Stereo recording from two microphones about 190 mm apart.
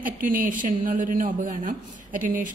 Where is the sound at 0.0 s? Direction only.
45° right (ahead or behind).